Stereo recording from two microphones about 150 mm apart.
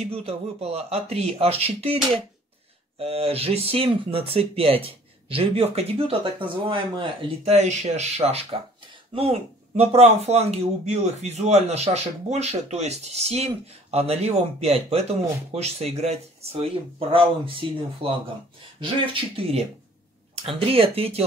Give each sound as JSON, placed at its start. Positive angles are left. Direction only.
{"t": 0.0, "sound": "speech", "side_deg": -40}